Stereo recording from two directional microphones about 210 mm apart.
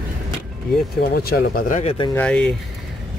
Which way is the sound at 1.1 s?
45° left (ahead or behind).